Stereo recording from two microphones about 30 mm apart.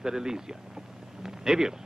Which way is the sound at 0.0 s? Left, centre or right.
Right.